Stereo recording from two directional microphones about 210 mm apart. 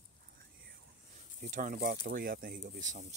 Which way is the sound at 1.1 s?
35° right (ahead or behind).